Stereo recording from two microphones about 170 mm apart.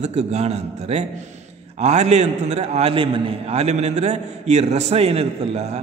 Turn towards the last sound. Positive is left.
turn(degrees=-40)  # may be behind; listen again after turning